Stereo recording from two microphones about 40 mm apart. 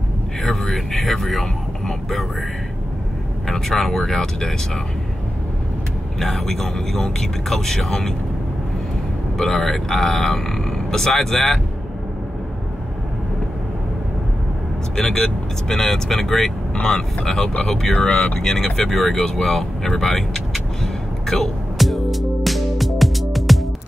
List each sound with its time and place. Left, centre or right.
0.4 s speech: centre
3.4 s speech: centre
6.1 s speech: centre
9.4 s speech: centre
15.0 s speech: centre
16.8 s speech: centre
17.9 s speech: left
18.4 s vehicle: centre